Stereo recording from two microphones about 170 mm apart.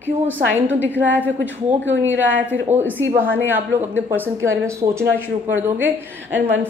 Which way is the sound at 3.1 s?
10° right (ahead or behind).